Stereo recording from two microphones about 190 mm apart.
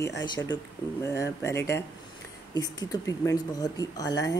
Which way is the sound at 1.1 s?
15° left (ahead or behind).